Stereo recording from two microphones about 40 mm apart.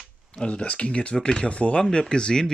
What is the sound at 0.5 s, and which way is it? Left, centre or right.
Speech, left.